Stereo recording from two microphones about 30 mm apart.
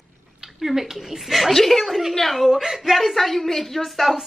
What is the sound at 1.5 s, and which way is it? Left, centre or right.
Speech, centre.